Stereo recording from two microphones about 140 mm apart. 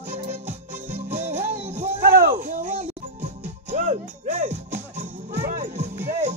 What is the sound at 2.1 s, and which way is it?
Music, 90° right.